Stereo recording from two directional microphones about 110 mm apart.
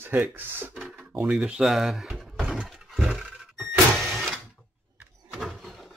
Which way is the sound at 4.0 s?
5° left (ahead or behind).